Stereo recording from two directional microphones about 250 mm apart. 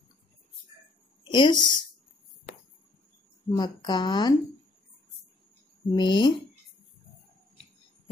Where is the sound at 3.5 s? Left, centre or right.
Centre.